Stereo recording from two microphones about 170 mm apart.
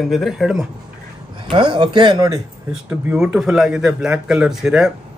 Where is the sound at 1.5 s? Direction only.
25° right (ahead or behind).